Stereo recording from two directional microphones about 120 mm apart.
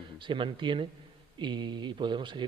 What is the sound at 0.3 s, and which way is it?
Speech, 40° right (ahead or behind).